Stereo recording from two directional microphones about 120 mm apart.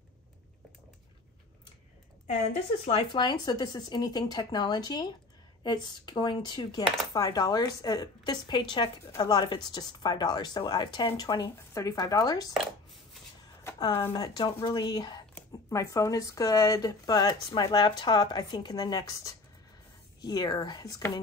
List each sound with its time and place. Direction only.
2.2 s speech: 70° left (ahead or behind)
2.9 s speech: 40° left (ahead or behind)
13.7 s speech: 35° left (ahead or behind)